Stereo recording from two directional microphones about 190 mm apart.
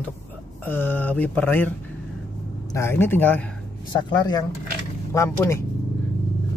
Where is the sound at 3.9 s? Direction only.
20° left (ahead or behind).